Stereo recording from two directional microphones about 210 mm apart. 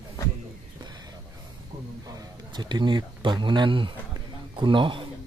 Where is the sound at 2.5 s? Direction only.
20° right (ahead or behind).